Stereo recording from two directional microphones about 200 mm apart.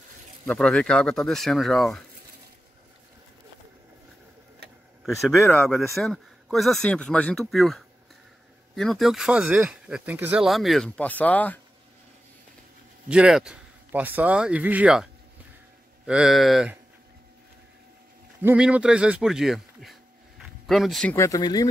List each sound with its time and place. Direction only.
0.5 s speech: 5° left (ahead or behind)
5.0 s speech: centre (ahead or behind)
5.4 s speech: 15° left (ahead or behind)
5.9 s speech: centre (ahead or behind)
13.1 s speech: 5° right (ahead or behind)
16.1 s speech: 5° right (ahead or behind)
18.4 s a man's voice: 5° right (ahead or behind)
21.2 s speech: 20° left (ahead or behind)